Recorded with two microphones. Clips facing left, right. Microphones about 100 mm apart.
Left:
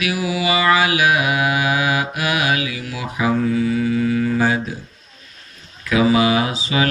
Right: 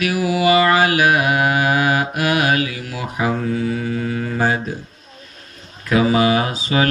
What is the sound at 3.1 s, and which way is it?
Speech, 40° right (ahead or behind).